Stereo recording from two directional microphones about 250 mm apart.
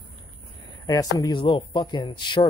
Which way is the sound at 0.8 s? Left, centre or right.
Centre.